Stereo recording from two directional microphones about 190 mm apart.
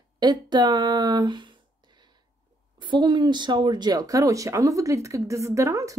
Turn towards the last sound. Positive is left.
turn(degrees=-15)  # may be behind; listen again after turning